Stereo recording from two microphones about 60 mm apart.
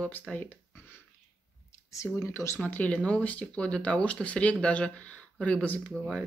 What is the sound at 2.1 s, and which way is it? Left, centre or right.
Speech, left.